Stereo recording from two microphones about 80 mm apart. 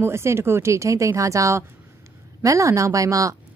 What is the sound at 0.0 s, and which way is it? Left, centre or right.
A woman's voice, right.